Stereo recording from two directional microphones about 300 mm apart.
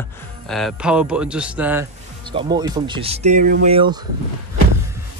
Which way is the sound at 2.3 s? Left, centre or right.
Centre.